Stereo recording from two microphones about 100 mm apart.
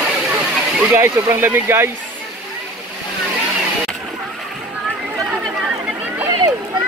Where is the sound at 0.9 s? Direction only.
25° right (ahead or behind).